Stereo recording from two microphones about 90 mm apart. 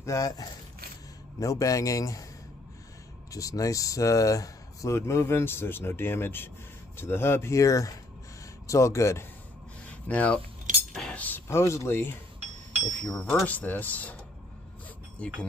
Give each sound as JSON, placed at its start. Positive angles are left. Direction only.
{"t": 0.0, "sound": "speech", "side_deg": 40}
{"t": 3.3, "sound": "speech", "side_deg": 40}
{"t": 9.8, "sound": "speech", "side_deg": 15}
{"t": 13.0, "sound": "speech", "side_deg": 5}
{"t": 13.5, "sound": "speech", "side_deg": 20}